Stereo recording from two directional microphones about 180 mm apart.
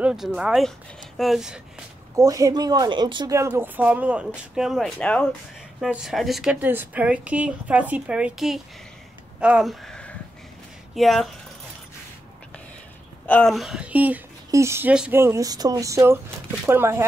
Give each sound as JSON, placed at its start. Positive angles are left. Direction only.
{"t": 0.0, "sound": "speech", "side_deg": -5}
{"t": 2.1, "sound": "speech", "side_deg": -20}
{"t": 13.3, "sound": "speech", "side_deg": 5}